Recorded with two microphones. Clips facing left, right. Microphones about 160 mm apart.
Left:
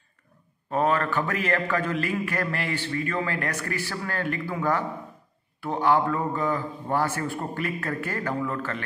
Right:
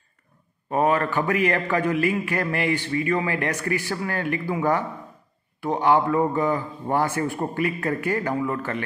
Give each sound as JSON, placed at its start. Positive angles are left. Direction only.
{"t": 0.7, "sound": "a man's voice", "side_deg": -15}